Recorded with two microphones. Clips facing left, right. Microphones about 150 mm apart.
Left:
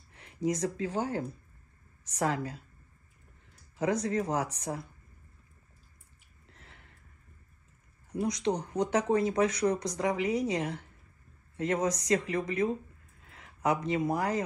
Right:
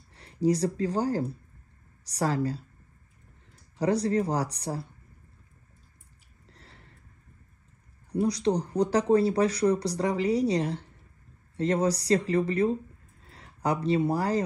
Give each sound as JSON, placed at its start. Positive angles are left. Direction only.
{"t": 0.1, "sound": "speech", "side_deg": -35}
{"t": 3.8, "sound": "speech", "side_deg": -35}
{"t": 6.5, "sound": "sigh", "side_deg": -35}
{"t": 8.1, "sound": "speech", "side_deg": -35}